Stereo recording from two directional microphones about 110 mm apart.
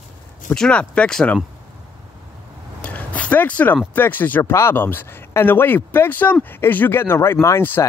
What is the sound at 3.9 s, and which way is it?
Speech, 15° left (ahead or behind).